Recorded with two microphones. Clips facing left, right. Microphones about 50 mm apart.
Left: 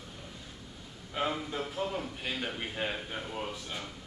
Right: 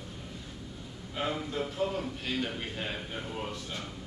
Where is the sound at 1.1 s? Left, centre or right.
Centre.